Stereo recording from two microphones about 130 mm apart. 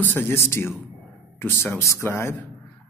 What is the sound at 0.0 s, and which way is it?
A man's voice, 15° left (ahead or behind).